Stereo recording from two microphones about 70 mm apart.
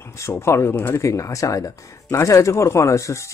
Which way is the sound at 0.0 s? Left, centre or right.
Left.